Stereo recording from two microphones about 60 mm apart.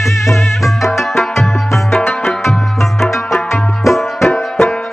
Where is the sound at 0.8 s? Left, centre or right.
Centre.